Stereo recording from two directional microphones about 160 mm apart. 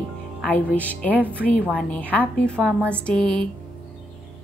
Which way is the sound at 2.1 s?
10° left (ahead or behind).